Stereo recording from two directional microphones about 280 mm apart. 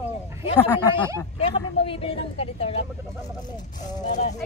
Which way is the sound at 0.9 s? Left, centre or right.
Centre.